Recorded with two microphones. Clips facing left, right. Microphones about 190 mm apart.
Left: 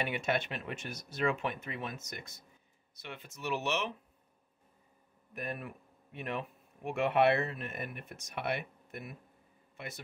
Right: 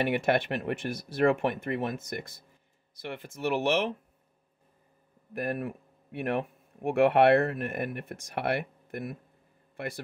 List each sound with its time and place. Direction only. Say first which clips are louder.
0.0 s speech: right 7 dB; 60° right (ahead or behind)
5.4 s speech: right 8 dB; 55° right (ahead or behind)